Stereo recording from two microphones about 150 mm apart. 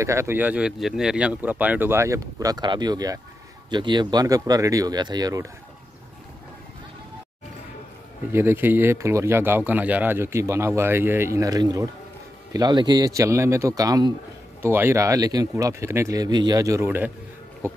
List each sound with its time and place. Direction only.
0.0 s speech: 20° right (ahead or behind)
8.3 s speech: 15° right (ahead or behind)